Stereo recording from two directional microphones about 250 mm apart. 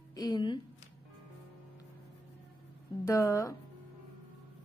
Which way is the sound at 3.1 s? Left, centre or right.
Centre.